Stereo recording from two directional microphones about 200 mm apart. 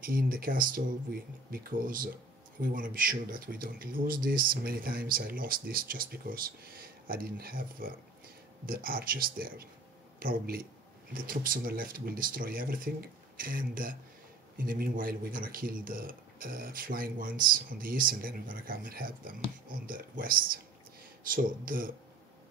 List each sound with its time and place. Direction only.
0.0 s speech: 45° right (ahead or behind)